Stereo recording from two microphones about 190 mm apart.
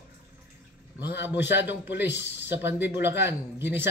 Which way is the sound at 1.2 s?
10° right (ahead or behind).